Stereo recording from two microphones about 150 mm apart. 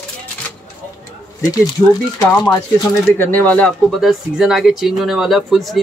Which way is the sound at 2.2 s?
25° left (ahead or behind).